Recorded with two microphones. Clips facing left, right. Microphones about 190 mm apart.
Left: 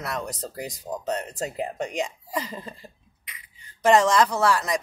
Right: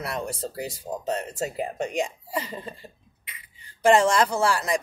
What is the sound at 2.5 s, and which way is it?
Speech, 25° right (ahead or behind).